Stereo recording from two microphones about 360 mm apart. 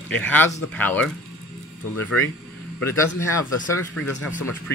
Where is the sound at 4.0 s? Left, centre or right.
Left.